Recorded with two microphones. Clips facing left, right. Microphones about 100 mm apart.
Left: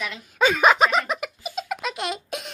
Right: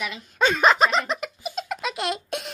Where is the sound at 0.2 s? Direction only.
5° left (ahead or behind).